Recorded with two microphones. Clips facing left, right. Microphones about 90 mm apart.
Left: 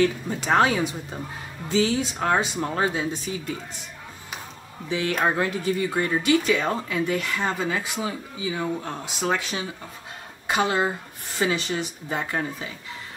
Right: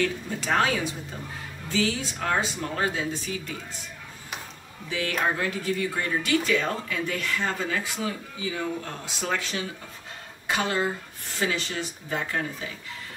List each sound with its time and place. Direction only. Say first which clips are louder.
0.4 s speech: left 5 dB; 20° left (ahead or behind)
1.7 s speech: left 5 dB; 20° left (ahead or behind)
4.8 s speech: left 3 dB; 20° left (ahead or behind)